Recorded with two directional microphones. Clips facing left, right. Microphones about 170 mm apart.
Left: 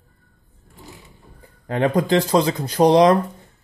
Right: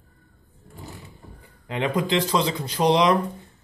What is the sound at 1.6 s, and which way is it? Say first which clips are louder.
A man's voice: left 5 dB; 45° left (ahead or behind).